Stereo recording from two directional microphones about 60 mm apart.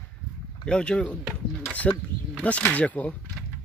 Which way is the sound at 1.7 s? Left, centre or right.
Left.